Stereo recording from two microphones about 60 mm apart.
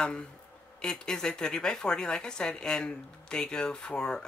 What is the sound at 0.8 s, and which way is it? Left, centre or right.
A woman's voice, centre.